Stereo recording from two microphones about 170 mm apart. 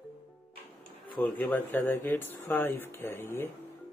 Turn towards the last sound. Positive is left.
turn(degrees=15)  # may be behind; listen again after turning